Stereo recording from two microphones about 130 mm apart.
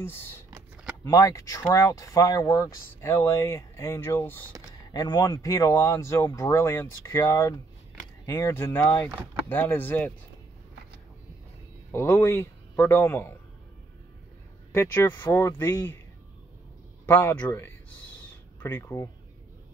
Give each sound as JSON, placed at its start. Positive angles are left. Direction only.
{"t": 0.0, "sound": "speech", "side_deg": 15}
{"t": 4.9, "sound": "speech", "side_deg": 30}
{"t": 11.9, "sound": "speech", "side_deg": 20}
{"t": 14.7, "sound": "speech", "side_deg": 20}
{"t": 17.0, "sound": "a man's voice", "side_deg": 20}